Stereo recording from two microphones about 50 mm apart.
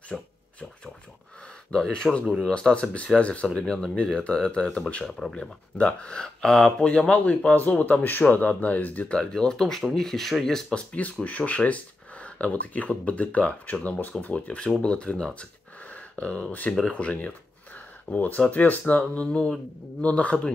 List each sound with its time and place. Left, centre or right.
0.1 s speech: centre
1.7 s speech: centre
6.9 s speech: left
9.1 s speech: centre
10.7 s speech: left
15.9 s a sound: left
16.8 s speech: left